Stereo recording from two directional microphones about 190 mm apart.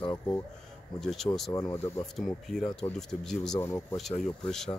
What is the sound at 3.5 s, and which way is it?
Speech, 15° left (ahead or behind).